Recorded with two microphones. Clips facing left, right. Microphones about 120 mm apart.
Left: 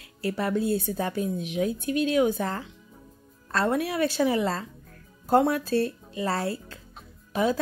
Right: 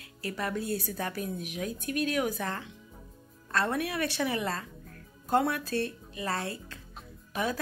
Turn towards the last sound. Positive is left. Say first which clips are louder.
# left 7 dB
turn(degrees=25)  # may be behind; listen again after turning